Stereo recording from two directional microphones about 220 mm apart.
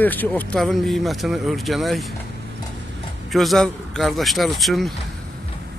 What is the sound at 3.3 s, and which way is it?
Speech, centre (ahead or behind).